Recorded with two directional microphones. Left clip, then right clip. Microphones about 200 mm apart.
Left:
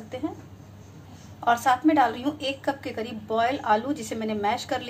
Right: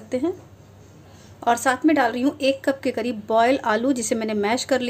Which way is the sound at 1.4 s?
55° right (ahead or behind).